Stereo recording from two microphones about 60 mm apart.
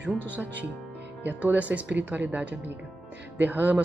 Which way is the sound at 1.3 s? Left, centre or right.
Right.